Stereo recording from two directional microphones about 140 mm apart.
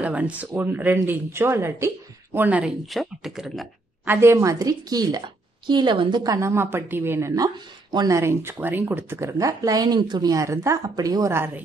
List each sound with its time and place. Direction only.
0.0 s speech: 10° right (ahead or behind)
2.9 s speech: centre (ahead or behind)
4.0 s a woman's voice: 15° right (ahead or behind)